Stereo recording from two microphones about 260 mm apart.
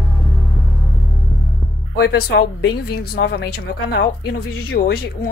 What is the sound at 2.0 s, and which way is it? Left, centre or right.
Speech, left.